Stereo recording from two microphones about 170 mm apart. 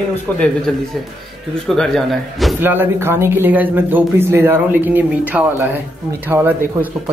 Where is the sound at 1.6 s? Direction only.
Centre (ahead or behind).